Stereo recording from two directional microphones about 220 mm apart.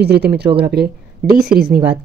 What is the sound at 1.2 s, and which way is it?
Speech, 5° right (ahead or behind).